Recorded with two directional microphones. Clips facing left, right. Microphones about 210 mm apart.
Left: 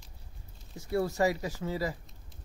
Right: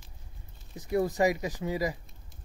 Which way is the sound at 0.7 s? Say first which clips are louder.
Right 2 dB; 15° right (ahead or behind).